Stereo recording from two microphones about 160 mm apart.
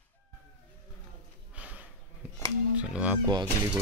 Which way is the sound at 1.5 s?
10° right (ahead or behind).